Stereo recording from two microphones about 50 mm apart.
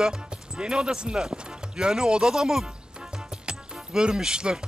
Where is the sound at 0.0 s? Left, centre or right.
Centre.